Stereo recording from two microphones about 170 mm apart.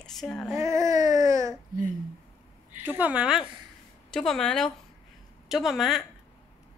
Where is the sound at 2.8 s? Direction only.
10° right (ahead or behind).